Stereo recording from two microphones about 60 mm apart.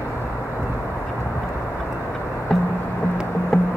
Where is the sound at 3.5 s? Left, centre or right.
Centre.